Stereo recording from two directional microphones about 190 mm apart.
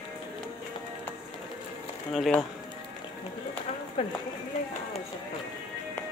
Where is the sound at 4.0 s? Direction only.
30° left (ahead or behind).